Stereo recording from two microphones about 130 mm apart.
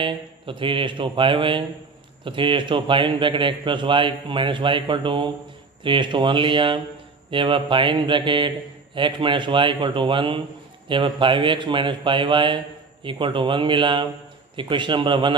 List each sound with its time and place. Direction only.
0.0 s speech: 40° right (ahead or behind)